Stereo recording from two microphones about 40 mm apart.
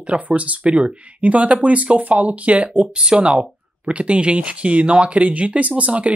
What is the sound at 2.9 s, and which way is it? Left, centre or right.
Speech, right.